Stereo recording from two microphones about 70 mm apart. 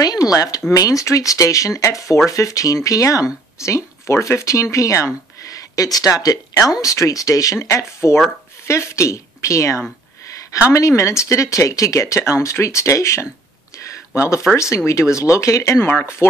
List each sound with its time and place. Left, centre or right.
0.0 s a woman's voice: left
14.3 s speech: left
15.8 s speech: left